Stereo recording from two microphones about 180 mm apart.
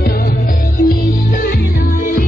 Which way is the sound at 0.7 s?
55° left (ahead or behind).